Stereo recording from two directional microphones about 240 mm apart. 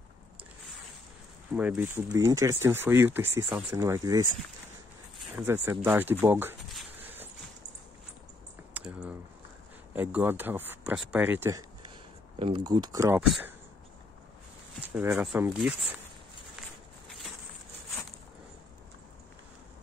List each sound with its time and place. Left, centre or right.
1.5 s speech: centre
5.3 s speech: centre
8.7 s typing: centre
9.9 s speech: centre
12.4 s speech: right
14.8 s speech: centre